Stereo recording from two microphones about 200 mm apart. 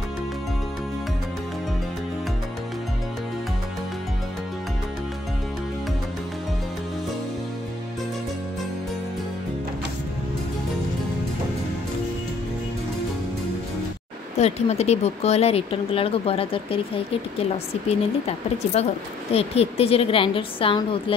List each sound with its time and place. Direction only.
14.4 s speech: 35° left (ahead or behind)